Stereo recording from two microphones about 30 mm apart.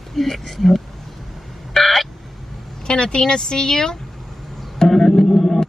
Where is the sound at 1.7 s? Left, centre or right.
Centre.